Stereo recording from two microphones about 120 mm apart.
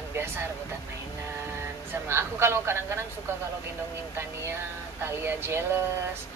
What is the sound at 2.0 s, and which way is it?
Speech, 20° right (ahead or behind).